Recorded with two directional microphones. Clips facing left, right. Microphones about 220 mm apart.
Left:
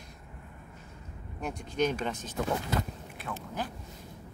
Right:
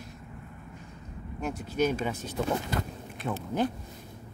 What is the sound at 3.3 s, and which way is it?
Speech, 25° right (ahead or behind).